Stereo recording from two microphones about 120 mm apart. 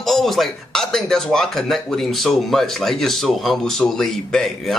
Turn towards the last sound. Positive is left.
turn(degrees=5)  # may be behind; listen again after turning